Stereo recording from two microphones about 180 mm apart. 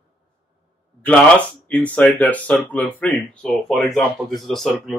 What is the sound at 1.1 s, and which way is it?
Speech, 10° left (ahead or behind).